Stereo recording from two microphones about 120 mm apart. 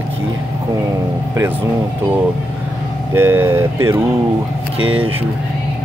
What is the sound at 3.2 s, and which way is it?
Speech, 20° right (ahead or behind).